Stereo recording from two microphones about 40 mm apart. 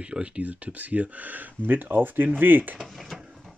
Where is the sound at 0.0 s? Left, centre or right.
Right.